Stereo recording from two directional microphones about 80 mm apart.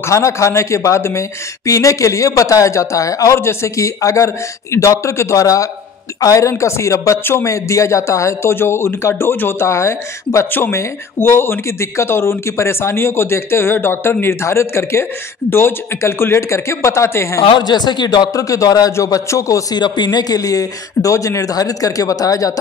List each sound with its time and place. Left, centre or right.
0.0 s speech: left
17.5 s speech: left
18.3 s speech: left
19.7 s speech: left